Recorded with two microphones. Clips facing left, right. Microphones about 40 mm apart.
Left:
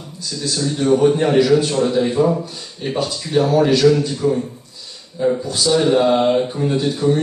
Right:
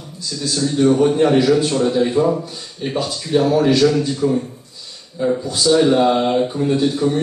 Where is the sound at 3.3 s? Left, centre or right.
Centre.